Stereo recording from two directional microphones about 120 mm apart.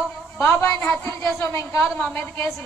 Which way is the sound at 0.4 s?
20° left (ahead or behind).